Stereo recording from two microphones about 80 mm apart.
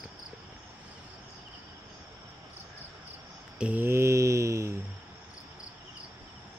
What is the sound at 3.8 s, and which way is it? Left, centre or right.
Mantra, right.